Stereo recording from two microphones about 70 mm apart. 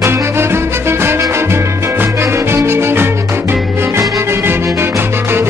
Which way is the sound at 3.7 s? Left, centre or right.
Right.